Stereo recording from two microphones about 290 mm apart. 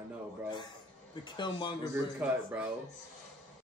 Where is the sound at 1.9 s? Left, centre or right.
Centre.